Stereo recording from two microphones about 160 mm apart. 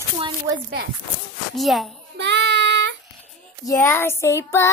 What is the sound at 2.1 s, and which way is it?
Child singing, 90° right.